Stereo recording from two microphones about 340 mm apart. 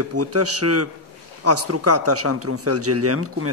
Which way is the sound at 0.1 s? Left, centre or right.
Right.